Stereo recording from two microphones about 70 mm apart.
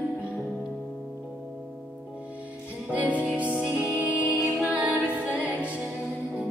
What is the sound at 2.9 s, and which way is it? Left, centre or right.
Music, right.